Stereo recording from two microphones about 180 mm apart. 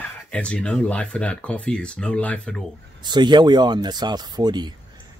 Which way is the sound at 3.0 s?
25° right (ahead or behind).